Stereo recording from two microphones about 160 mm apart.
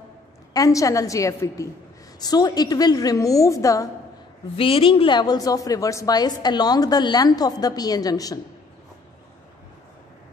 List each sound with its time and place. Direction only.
0.5 s a woman's voice: 20° left (ahead or behind)
4.6 s a woman's voice: 35° left (ahead or behind)